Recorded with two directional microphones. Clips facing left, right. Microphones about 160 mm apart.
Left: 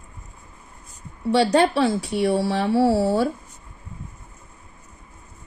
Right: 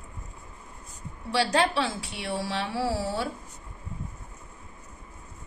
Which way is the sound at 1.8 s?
45° left (ahead or behind).